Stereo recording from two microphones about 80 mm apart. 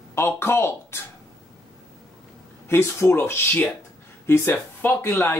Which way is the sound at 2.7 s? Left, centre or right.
Left.